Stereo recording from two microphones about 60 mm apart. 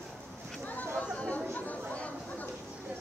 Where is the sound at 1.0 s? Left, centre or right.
Left.